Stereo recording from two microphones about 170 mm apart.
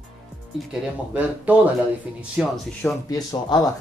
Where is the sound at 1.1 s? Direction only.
10° right (ahead or behind).